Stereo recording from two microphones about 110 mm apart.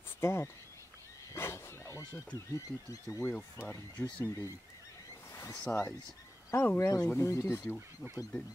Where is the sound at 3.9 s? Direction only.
15° left (ahead or behind).